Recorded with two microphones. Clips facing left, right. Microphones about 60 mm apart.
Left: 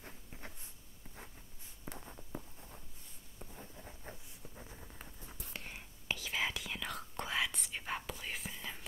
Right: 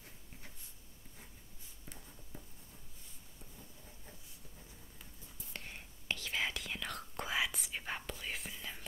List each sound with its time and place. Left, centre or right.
1.9 s writing: left
3.5 s a sound: left
5.5 s whispering: centre